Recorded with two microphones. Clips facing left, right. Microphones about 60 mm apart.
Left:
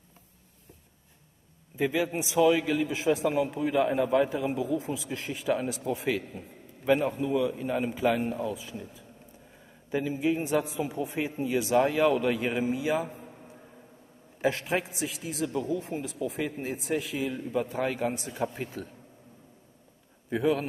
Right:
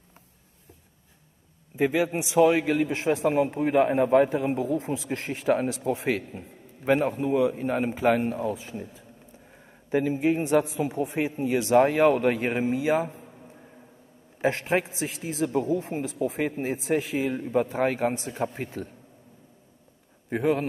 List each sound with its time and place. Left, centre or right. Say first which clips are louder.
1.8 s speech: right 4 dB; right
2.3 s a man's voice: right 3 dB; right
5.2 s a man's voice: right 4 dB; right
11.7 s a man's voice: right 5 dB; right
14.4 s a man's voice: right 3 dB; right